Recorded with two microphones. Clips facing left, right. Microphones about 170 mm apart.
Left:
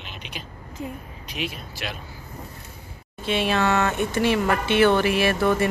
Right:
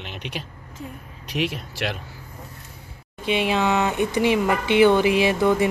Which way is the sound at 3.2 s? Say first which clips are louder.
Right 1 dB; 15° right (ahead or behind).